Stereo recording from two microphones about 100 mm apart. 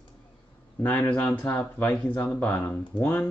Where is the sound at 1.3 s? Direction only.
20° left (ahead or behind).